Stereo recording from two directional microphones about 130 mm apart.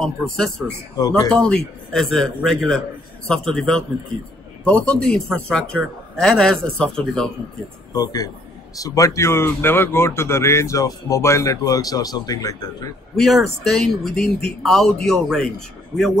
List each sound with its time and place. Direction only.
0.9 s speech: 30° left (ahead or behind)
1.3 s a man's voice: 5° left (ahead or behind)
7.9 s speech: 30° left (ahead or behind)
13.1 s a man's voice: centre (ahead or behind)